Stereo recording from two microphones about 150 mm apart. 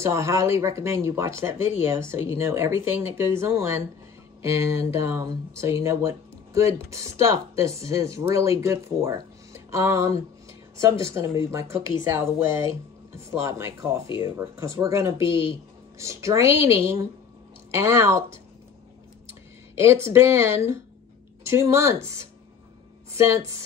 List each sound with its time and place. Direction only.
0.0 s speech: 20° right (ahead or behind)